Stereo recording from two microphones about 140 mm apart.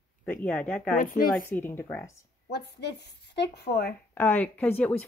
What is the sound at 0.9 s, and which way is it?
Speech, 80° left.